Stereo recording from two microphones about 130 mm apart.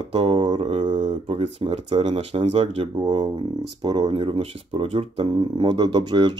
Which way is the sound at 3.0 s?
35° right (ahead or behind).